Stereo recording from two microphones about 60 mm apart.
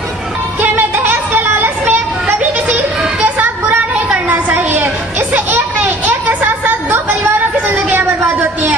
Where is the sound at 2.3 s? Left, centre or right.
Right.